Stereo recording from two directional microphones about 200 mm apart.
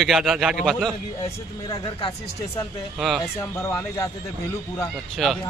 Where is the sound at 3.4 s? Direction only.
10° left (ahead or behind).